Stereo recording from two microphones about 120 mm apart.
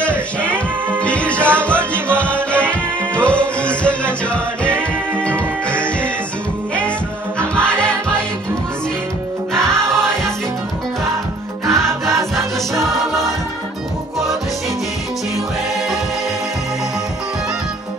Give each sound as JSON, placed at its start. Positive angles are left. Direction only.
{"t": 0.0, "sound": "music", "side_deg": 10}
{"t": 7.6, "sound": "music", "side_deg": 10}
{"t": 9.5, "sound": "music", "side_deg": 5}
{"t": 11.6, "sound": "music", "side_deg": -25}
{"t": 12.8, "sound": "music", "side_deg": 0}